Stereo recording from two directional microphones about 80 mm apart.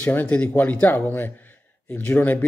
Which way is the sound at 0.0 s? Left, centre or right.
Left.